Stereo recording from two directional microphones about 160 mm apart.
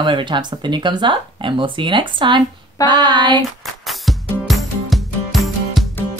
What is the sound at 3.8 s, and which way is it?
Music, centre (ahead or behind).